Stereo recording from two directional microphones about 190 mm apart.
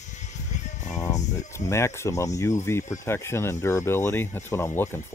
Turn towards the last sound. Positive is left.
turn(degrees=15)  # may be behind; listen again after turning